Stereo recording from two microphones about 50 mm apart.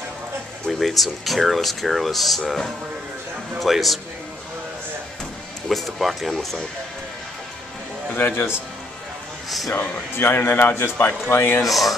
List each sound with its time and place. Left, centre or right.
0.7 s speech: centre
5.7 s speech: centre
8.1 s a man's voice: left
10.1 s a man's voice: left
11.6 s speech: centre